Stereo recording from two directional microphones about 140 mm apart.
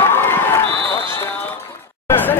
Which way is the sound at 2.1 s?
15° left (ahead or behind).